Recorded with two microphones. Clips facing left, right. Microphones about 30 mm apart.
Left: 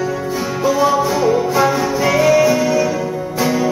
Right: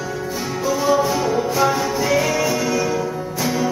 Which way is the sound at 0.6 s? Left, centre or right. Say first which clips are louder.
Left 3 dB; centre.